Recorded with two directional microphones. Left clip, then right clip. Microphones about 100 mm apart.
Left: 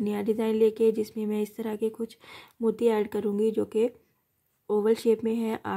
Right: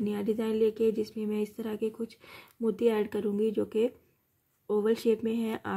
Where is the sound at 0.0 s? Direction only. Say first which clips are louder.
Left 3 dB; 40° left (ahead or behind).